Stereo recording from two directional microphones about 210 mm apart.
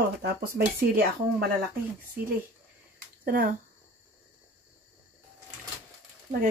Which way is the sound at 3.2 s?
40° right (ahead or behind).